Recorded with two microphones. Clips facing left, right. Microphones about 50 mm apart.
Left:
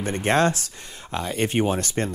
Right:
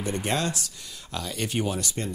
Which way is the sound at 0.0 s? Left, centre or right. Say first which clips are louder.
Left 7 dB; left.